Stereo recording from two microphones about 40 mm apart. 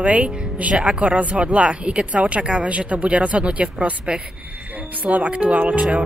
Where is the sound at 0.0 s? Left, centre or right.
Right.